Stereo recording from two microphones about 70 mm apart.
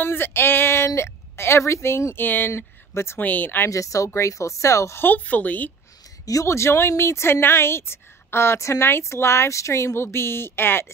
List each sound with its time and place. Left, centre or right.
0.0 s a woman's voice: left
3.2 s speech: left
3.6 s speech: left
5.0 s speech: left
6.4 s speech: left